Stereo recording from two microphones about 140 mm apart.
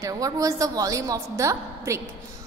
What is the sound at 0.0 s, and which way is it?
A woman's voice, 25° right (ahead or behind).